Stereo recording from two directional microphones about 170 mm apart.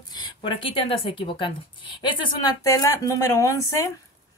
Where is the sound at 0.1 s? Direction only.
30° left (ahead or behind).